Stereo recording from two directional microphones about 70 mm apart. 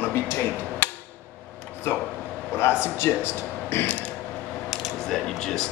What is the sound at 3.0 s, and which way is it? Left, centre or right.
Speech, left.